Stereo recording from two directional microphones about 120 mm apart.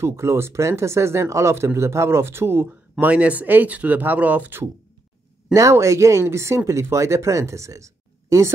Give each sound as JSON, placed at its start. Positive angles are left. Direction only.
{"t": 0.0, "sound": "speech", "side_deg": -25}